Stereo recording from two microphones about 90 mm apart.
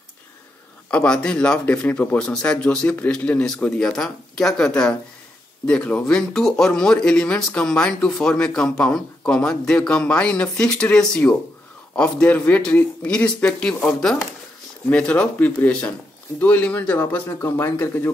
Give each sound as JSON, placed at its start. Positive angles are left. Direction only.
{"t": 0.8, "sound": "speech", "side_deg": 10}